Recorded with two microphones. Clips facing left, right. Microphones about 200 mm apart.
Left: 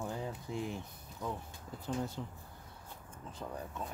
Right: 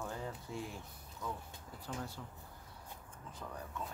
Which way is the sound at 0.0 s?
20° left (ahead or behind).